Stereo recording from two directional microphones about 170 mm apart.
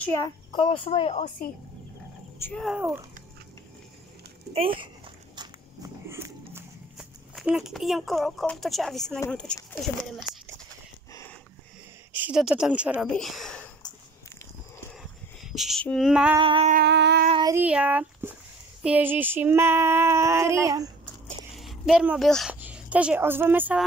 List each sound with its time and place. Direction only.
0.5 s speech: 30° left (ahead or behind)
2.5 s speech: centre (ahead or behind)
5.3 s walk: 20° right (ahead or behind)
6.5 s speech: 5° right (ahead or behind)
12.1 s a woman's voice: 10° right (ahead or behind)
15.4 s female singing: centre (ahead or behind)
16.3 s a sound: 30° right (ahead or behind)
16.8 s a sound: 85° right
17.5 s female singing: 10° right (ahead or behind)
21.5 s a sound: centre (ahead or behind)
22.5 s speech: 10° right (ahead or behind)